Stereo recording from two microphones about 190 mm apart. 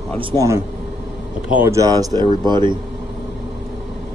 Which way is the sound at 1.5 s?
10° right (ahead or behind).